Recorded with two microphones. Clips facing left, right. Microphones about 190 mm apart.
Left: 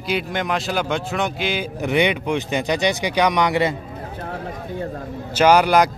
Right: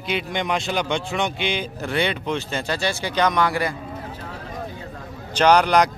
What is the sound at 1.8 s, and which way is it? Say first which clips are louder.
Speech: left 6 dB; 15° left (ahead or behind).